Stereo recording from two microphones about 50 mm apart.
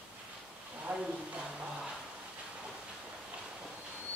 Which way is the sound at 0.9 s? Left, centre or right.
Right.